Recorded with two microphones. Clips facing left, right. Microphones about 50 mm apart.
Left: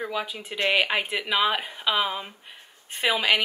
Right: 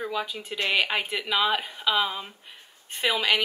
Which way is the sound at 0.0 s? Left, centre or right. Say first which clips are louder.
Even; centre.